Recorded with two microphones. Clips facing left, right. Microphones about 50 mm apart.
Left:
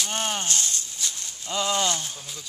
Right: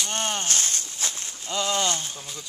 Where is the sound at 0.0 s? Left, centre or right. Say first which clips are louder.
Even; centre.